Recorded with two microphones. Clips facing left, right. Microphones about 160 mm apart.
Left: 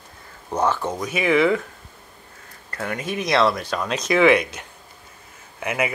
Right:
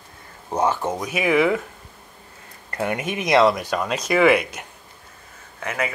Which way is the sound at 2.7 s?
20° right (ahead or behind).